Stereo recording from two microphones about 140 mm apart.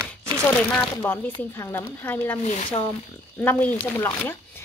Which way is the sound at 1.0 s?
15° left (ahead or behind).